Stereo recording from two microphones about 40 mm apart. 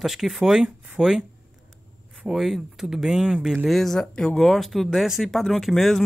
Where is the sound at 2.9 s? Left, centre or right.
Centre.